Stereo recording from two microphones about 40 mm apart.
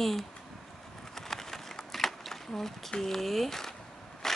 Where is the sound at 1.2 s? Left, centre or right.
Centre.